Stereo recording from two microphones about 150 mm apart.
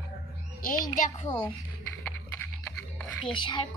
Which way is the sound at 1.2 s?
15° left (ahead or behind).